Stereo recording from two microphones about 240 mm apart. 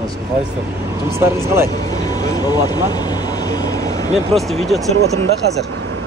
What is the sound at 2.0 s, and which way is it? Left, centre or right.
Speech, centre.